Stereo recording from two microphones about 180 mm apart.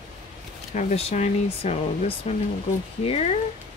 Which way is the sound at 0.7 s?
40° left (ahead or behind).